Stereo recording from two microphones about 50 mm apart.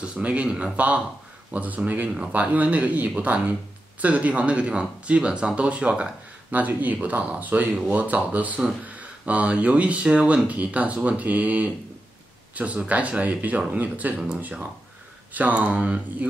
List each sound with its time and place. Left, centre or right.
0.0 s speech: right
2.0 s speech: centre
2.3 s speech: right
6.5 s speech: right
15.3 s speech: right